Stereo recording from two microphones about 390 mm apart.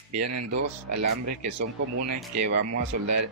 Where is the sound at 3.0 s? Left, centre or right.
Right.